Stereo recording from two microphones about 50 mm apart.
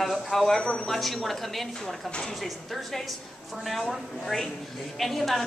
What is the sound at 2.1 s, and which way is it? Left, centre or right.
Speech, centre.